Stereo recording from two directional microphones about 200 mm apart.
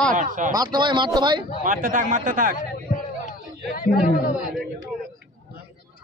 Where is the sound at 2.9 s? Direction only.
45° left (ahead or behind).